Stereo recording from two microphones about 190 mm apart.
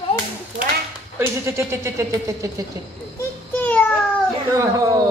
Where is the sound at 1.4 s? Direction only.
15° right (ahead or behind).